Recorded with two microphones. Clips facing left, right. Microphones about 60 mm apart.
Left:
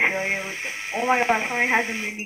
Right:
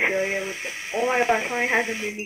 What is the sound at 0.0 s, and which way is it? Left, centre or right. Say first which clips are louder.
Speech: even; left.